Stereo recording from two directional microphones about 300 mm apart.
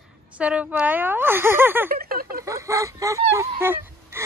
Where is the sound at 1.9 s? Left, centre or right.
Right.